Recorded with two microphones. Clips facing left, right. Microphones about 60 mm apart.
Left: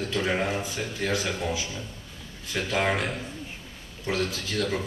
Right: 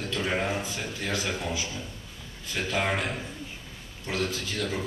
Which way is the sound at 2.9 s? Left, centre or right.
Centre.